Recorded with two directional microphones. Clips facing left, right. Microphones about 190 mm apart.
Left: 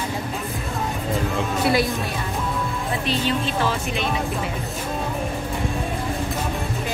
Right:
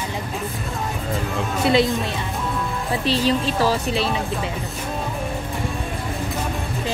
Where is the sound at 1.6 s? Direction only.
25° right (ahead or behind).